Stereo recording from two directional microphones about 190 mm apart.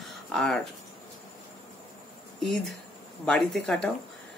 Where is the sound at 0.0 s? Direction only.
Centre (ahead or behind).